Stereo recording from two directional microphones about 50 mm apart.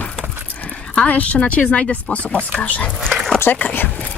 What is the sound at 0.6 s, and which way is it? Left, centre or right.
Speech, left.